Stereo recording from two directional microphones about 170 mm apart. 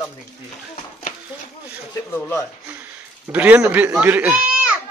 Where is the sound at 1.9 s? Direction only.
10° left (ahead or behind).